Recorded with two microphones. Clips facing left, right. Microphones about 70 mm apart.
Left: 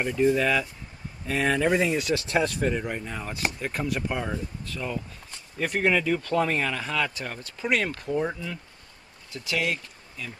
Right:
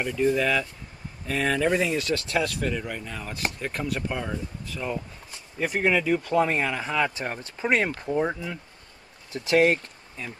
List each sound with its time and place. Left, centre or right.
0.0 s speech: centre
2.2 s speech: left
3.3 s speech: centre
4.6 s speech: centre
9.3 s speech: right